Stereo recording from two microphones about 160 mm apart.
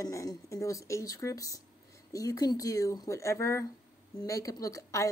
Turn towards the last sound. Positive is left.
turn(degrees=20)  # may be behind; listen again after turning